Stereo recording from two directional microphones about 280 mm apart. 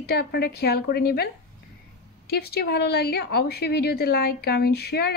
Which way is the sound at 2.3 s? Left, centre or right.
Left.